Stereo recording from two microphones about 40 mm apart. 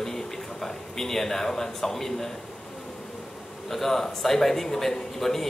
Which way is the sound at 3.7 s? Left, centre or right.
Centre.